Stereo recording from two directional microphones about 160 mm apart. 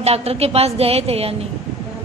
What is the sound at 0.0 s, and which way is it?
A woman's voice, 40° right (ahead or behind).